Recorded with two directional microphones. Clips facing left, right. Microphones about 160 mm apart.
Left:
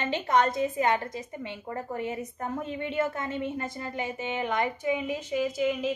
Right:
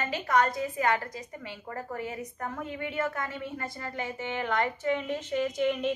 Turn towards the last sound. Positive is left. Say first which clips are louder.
# left 1 dB
turn(degrees=5)  # may be behind; listen again after turning